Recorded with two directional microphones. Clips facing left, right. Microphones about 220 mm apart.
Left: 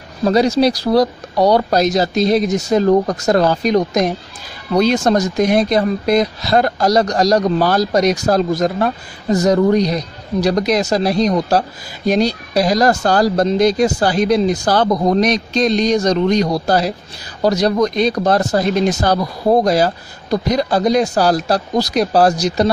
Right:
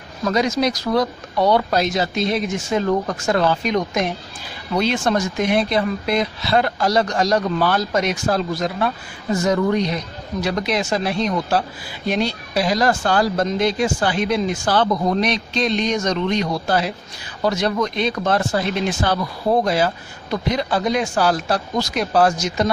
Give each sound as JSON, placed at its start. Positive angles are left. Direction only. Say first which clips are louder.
{"t": 0.2, "sound": "speech", "louder": "left 6 dB", "side_deg": 35}